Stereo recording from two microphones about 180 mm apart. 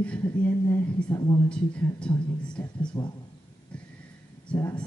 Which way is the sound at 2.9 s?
25° left (ahead or behind).